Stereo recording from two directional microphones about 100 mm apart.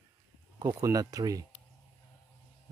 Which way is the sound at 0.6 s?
35° right (ahead or behind).